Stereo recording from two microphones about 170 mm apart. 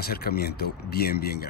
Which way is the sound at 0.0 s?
65° left (ahead or behind).